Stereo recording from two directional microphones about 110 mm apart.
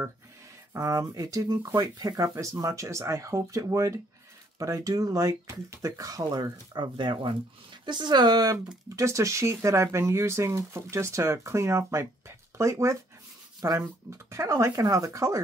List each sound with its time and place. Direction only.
0.7 s speech: 30° right (ahead or behind)
8.8 s speech: 25° right (ahead or behind)